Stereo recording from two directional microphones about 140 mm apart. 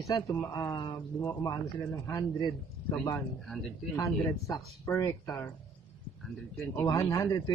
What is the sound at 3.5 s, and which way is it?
Speech, centre (ahead or behind).